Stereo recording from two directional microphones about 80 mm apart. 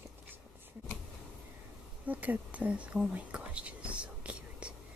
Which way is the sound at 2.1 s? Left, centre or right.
Centre.